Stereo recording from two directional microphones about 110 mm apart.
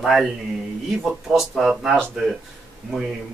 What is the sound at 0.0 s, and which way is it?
Speech, centre (ahead or behind).